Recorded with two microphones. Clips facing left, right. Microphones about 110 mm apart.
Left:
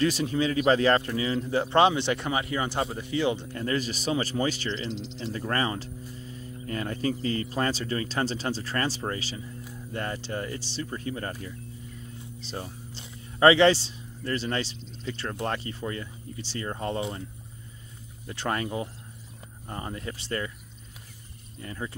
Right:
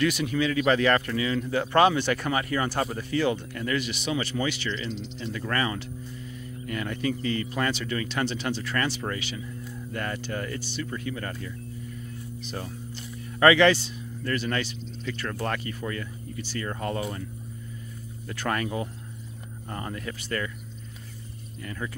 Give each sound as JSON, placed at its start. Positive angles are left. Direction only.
{"t": 0.0, "sound": "speech", "side_deg": 30}
{"t": 12.9, "sound": "speech", "side_deg": 25}
{"t": 18.2, "sound": "speech", "side_deg": 25}
{"t": 21.6, "sound": "speech", "side_deg": 25}